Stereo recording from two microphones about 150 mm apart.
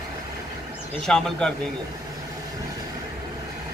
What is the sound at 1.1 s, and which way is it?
Speech, 5° left (ahead or behind).